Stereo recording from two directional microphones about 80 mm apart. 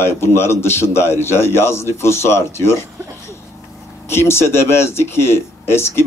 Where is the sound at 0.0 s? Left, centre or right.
Left.